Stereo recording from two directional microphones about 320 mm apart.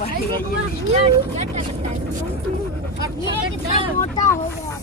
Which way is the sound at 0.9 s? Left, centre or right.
Centre.